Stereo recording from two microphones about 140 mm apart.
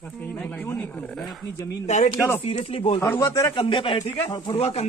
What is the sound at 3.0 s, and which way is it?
Speech, 20° left (ahead or behind).